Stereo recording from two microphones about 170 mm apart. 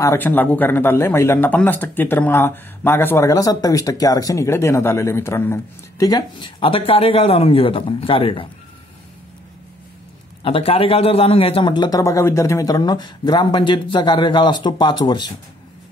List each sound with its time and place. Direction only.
0.0 s speech: 15° left (ahead or behind); by 8.5 s 30° left (ahead or behind)
10.4 s a man's voice: 35° left (ahead or behind)